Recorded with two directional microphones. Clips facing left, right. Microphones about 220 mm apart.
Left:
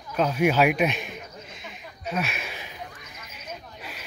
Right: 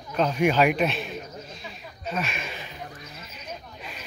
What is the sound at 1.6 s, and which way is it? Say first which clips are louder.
Sheep: left 4 dB; 10° left (ahead or behind).